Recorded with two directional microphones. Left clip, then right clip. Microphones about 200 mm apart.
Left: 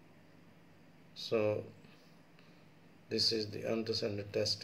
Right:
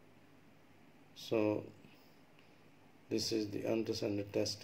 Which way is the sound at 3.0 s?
40° right (ahead or behind).